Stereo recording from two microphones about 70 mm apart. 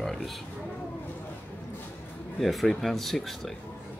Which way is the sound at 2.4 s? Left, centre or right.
Centre.